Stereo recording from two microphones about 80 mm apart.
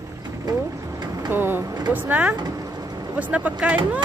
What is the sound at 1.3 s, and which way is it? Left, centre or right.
Vehicle, right.